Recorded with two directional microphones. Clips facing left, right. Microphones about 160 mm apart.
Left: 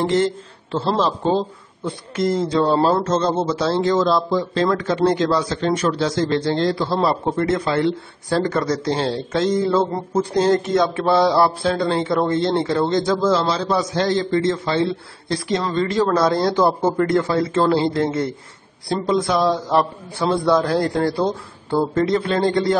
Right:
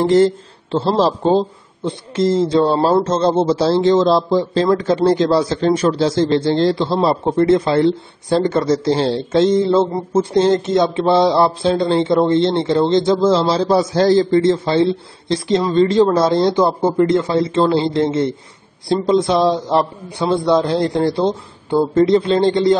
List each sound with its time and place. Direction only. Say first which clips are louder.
0.0 s a woman's voice: right 6 dB; 40° right (ahead or behind); by 22.8 s 20° right (ahead or behind)